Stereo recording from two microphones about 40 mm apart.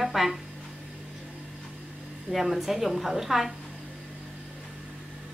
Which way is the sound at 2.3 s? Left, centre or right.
Centre.